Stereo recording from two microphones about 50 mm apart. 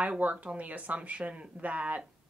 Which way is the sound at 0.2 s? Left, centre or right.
Right.